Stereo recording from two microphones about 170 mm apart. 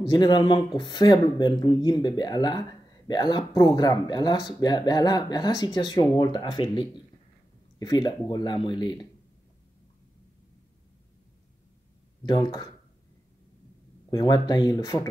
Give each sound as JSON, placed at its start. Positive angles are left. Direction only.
{"t": 0.1, "sound": "speech", "side_deg": 25}
{"t": 12.3, "sound": "speech", "side_deg": 25}
{"t": 14.1, "sound": "speech", "side_deg": 25}